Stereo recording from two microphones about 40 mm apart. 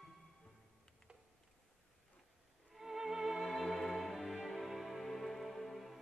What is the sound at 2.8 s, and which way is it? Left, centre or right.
Music, centre.